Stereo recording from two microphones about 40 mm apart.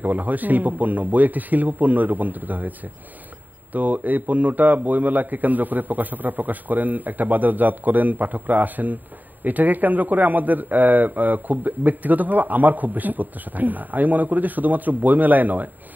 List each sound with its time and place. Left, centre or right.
0.0 s a man's voice: right
3.7 s a man's voice: right